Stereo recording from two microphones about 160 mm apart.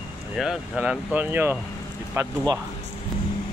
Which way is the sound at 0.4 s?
5° right (ahead or behind).